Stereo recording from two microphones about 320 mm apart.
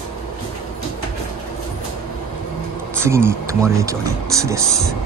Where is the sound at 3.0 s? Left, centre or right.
Centre.